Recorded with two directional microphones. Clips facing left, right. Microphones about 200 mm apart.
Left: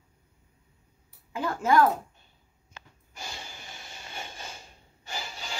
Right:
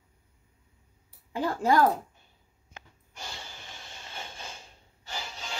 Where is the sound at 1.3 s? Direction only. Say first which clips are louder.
Left 1 dB; 35° right (ahead or behind).